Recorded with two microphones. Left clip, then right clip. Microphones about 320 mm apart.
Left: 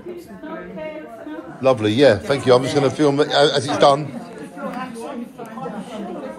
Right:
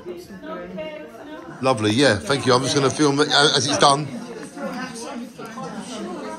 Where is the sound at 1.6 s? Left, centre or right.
Centre.